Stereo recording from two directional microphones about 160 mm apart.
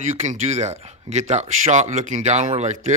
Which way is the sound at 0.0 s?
45° right (ahead or behind).